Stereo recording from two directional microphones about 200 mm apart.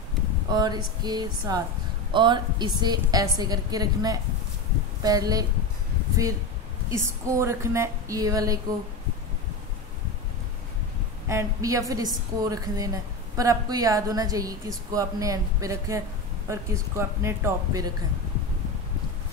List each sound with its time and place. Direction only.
0.5 s a woman's voice: 20° right (ahead or behind)
6.9 s a woman's voice: 15° right (ahead or behind)
11.2 s a woman's voice: 15° right (ahead or behind)